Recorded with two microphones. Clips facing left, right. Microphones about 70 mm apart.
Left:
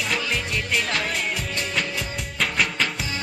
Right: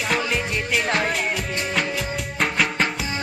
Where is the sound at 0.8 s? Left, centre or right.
Right.